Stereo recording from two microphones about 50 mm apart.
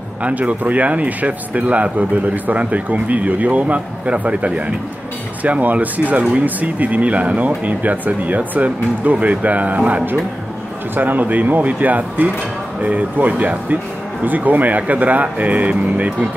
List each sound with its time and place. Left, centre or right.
0.2 s speech: right